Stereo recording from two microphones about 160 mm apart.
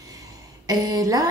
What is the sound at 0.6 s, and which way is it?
Speech, 20° right (ahead or behind).